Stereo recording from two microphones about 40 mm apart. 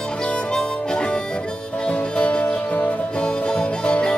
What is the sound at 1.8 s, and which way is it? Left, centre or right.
Music, left.